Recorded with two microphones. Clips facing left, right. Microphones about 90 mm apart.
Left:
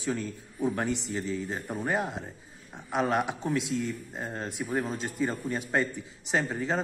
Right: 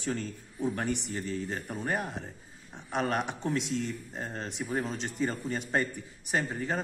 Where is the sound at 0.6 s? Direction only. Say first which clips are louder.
Left 2 dB; 15° left (ahead or behind).